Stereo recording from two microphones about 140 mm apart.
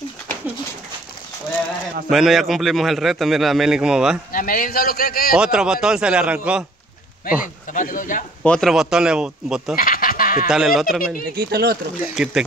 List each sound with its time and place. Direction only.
2.0 s a man's voice: centre (ahead or behind)
4.3 s a man's voice: 90° left
5.3 s a man's voice: 5° right (ahead or behind)
7.2 s a man's voice: 70° left (ahead or behind)
8.5 s a man's voice: 5° left (ahead or behind)
9.8 s goat: 90° left
10.5 s a man's voice: centre (ahead or behind)
11.3 s speech: 90° right
12.0 s a man's voice: 5° right (ahead or behind)